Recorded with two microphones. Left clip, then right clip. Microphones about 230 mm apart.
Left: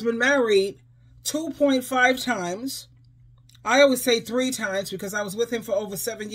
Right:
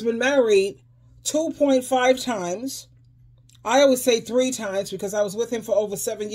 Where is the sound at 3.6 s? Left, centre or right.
Left.